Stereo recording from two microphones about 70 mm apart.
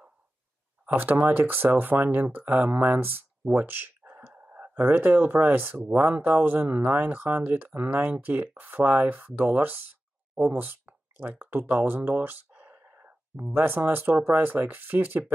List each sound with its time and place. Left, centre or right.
0.8 s speech: right